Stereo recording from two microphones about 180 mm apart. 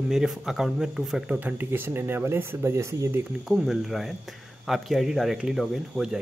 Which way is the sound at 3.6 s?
Centre (ahead or behind).